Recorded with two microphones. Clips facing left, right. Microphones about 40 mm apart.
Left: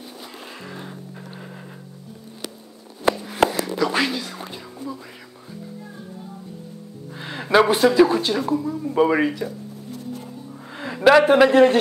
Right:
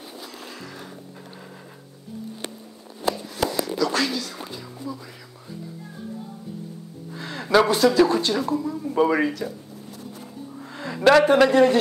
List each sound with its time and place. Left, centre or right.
0.6 s music: centre
3.1 s a sound: left
3.4 s music: left
7.2 s speech: left
10.7 s music: centre
11.2 s a man's voice: centre